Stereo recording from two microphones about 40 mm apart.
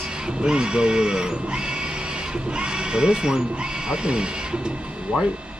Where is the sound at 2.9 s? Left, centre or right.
Right.